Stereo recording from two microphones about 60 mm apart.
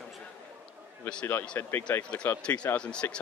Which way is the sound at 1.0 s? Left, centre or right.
Left.